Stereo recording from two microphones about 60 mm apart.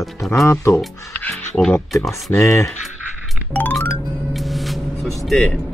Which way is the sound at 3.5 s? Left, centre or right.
Left.